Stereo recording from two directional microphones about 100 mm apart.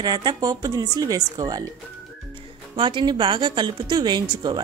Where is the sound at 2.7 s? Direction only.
55° right (ahead or behind).